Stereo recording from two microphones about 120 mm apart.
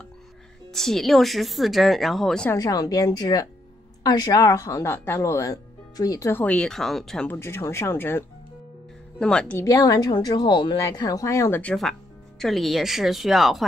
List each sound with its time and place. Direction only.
0.7 s a woman's voice: 5° left (ahead or behind)
2.5 s speech: 30° left (ahead or behind)
6.4 s a woman's voice: 10° left (ahead or behind)
7.2 s speech: 20° left (ahead or behind)
9.2 s speech: 5° left (ahead or behind)
9.6 s speech: 25° left (ahead or behind); by 10.8 s 40° left (ahead or behind)
10.8 s speech: 30° left (ahead or behind)
11.6 s a woman's voice: 5° left (ahead or behind)